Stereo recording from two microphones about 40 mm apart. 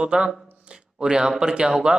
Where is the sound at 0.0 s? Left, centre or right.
Right.